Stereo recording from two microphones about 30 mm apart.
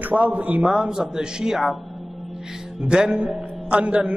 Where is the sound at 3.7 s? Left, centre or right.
Right.